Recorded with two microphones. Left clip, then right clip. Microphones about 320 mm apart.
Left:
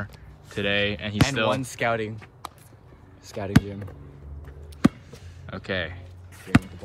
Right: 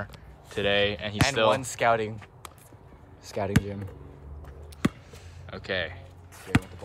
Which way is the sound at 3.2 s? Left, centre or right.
Right.